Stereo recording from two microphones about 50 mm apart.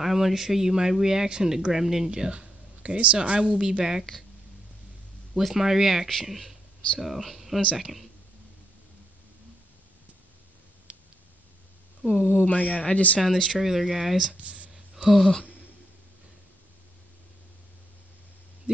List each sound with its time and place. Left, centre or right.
0.0 s speech: centre; by 3.8 s right
5.3 s speech: centre
12.1 s speech: left
13.5 s speech: centre
14.4 s a sound: right
15.0 s speech: centre